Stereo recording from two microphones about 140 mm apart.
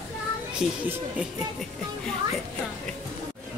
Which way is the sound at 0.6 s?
5° right (ahead or behind).